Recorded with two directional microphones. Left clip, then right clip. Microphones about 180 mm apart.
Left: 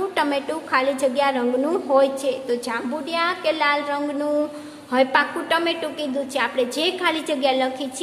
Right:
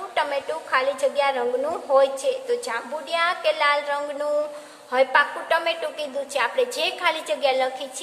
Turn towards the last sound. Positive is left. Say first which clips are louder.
# left 1 dB
turn(degrees=0)  # may be behind; listen again after turning